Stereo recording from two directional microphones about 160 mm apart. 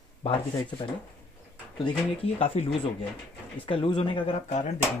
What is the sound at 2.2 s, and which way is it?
Speech, 40° left (ahead or behind).